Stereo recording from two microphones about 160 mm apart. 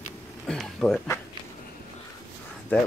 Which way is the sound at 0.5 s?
5° left (ahead or behind).